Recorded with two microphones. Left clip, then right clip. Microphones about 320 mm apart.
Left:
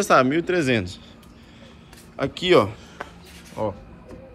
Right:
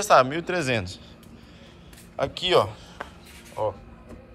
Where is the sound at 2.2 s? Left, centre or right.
Centre.